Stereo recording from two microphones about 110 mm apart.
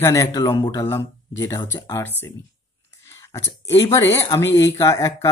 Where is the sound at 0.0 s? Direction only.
25° left (ahead or behind).